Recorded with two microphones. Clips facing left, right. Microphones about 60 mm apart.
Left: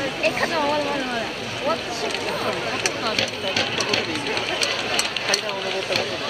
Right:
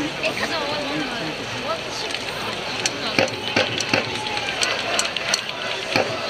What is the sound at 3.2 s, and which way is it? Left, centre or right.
Run, right.